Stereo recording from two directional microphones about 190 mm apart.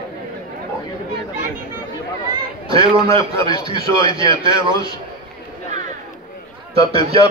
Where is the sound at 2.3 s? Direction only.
25° right (ahead or behind).